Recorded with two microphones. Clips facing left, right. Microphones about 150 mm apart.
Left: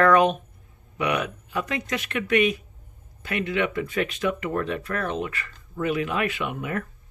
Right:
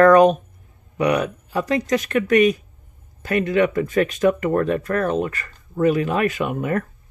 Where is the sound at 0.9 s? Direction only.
40° right (ahead or behind).